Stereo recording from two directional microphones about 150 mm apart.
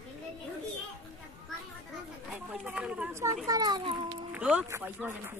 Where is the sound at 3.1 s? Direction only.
20° right (ahead or behind).